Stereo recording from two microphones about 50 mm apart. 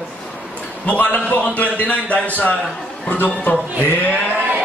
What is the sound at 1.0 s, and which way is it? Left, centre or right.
Speech, left.